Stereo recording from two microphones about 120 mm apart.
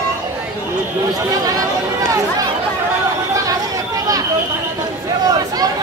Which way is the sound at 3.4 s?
30° right (ahead or behind).